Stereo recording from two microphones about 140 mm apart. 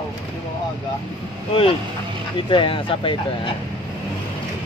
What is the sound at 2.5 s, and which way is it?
Speech, 40° left (ahead or behind).